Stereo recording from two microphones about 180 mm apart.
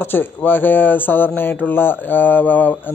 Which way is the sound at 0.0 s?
10° left (ahead or behind).